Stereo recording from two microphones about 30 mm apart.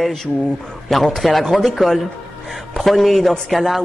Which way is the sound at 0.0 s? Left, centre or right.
Centre.